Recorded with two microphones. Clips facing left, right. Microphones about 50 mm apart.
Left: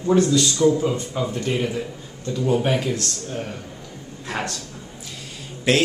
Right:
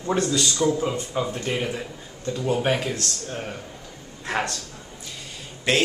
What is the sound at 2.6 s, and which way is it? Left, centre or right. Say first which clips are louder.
Speech: left 2 dB; centre.